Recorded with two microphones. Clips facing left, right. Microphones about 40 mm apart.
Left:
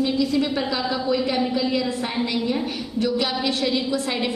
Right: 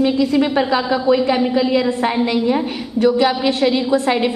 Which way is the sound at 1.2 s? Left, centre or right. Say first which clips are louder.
Right 6 dB; centre.